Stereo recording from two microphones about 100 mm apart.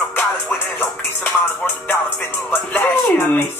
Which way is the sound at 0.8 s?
20° left (ahead or behind).